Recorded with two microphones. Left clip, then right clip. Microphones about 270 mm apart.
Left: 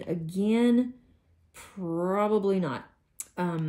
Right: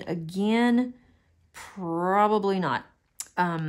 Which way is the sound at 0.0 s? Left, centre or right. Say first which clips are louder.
Right 1 dB; right.